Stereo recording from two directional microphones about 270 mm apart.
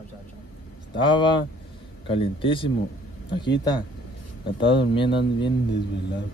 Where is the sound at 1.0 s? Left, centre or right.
Centre.